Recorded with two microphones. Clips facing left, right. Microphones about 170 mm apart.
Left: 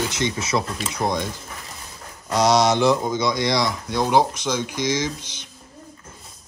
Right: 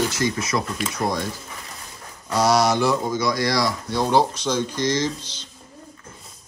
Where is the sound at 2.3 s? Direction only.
20° left (ahead or behind).